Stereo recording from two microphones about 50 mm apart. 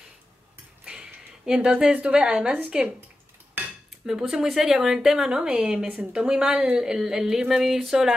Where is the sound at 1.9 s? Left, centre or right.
Centre.